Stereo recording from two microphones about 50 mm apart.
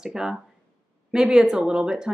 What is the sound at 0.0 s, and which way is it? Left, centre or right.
Speech, centre.